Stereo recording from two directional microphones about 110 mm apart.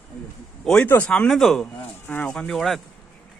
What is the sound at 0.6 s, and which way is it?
Speech, 5° left (ahead or behind).